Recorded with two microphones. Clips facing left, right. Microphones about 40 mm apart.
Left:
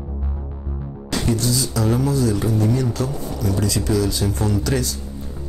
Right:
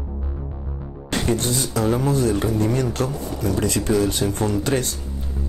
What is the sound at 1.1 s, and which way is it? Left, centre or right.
Speech, right.